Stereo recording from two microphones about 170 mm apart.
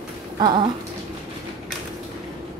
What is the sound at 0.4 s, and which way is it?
Speech, 25° right (ahead or behind).